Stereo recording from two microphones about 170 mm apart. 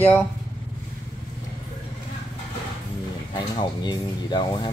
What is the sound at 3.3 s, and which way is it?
Speech, 25° left (ahead or behind).